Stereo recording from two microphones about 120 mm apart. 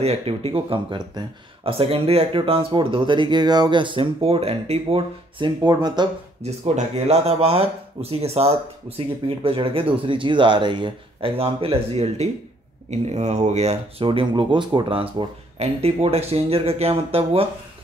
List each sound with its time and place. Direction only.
0.0 s speech: 60° right (ahead or behind); by 1.2 s 40° right (ahead or behind)
1.6 s speech: 50° right (ahead or behind); by 6.0 s 35° right (ahead or behind)
6.4 s speech: 65° right (ahead or behind)
12.9 s speech: 70° right (ahead or behind); by 17.5 s 50° right (ahead or behind)